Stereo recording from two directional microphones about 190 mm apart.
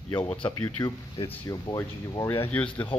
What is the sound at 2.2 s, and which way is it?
Speech, 10° left (ahead or behind).